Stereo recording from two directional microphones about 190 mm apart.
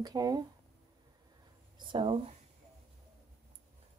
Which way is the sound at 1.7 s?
25° right (ahead or behind).